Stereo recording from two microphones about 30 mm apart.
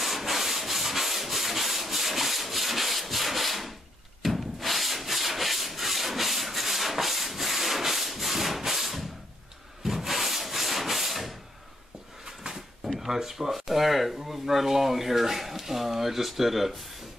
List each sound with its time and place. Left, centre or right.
0.0 s rub: centre
4.2 s wood: centre
12.3 s drawer open or close: centre
13.0 s speech: centre